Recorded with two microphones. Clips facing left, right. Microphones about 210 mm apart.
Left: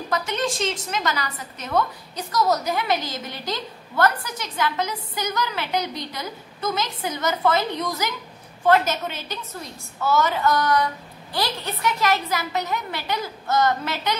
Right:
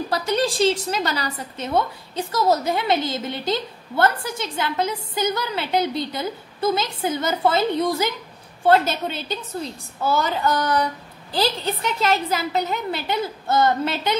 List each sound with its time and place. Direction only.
0.1 s a woman's voice: 35° right (ahead or behind)